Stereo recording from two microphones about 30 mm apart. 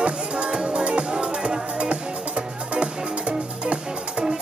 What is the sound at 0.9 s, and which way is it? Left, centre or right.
Music, right.